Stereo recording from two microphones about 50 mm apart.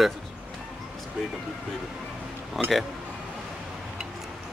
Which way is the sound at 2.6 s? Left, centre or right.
Centre.